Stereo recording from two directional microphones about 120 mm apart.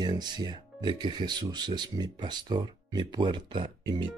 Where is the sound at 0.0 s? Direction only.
35° right (ahead or behind).